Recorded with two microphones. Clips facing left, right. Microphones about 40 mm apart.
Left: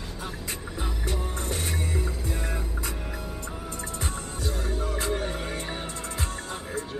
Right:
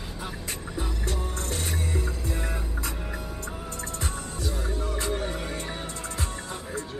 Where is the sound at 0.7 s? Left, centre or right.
Centre.